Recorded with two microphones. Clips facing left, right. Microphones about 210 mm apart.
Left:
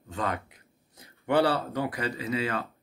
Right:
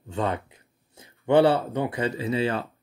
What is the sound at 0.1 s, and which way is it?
Speech, 30° right (ahead or behind).